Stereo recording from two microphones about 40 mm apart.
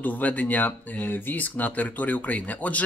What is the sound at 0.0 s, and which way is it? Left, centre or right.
Speech, left.